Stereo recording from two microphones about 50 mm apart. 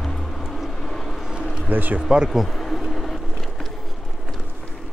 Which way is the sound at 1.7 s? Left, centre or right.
Right.